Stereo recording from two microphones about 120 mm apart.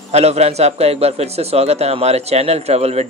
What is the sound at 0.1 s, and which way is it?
A man's voice, 65° right (ahead or behind).